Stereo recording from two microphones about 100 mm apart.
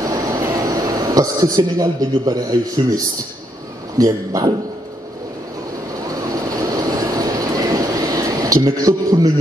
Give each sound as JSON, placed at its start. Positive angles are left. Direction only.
{"t": 0.0, "sound": "a sound", "side_deg": -35}
{"t": 4.0, "sound": "a man's voice", "side_deg": -35}
{"t": 6.2, "sound": "train", "side_deg": -35}
{"t": 8.6, "sound": "a man's voice", "side_deg": -35}